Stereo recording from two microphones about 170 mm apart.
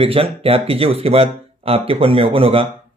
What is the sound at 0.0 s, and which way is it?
Speech, 35° right (ahead or behind).